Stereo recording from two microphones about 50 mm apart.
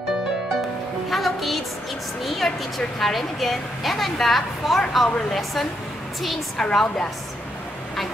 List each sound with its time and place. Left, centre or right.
1.1 s music: centre
2.2 s a woman's voice: centre